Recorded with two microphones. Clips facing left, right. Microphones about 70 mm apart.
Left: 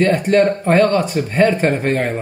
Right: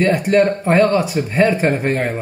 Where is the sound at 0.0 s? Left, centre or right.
Centre.